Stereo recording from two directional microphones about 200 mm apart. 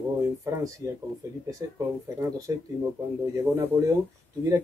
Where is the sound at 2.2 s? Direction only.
15° right (ahead or behind).